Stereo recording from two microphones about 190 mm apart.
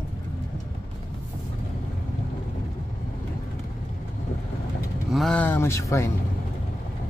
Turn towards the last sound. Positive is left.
turn(degrees=15)  # may be behind; listen again after turning